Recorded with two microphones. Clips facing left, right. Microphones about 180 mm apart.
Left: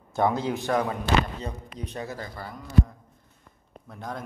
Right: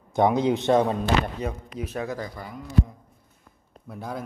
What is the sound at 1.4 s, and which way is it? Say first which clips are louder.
Speech: right 5 dB; 10° right (ahead or behind).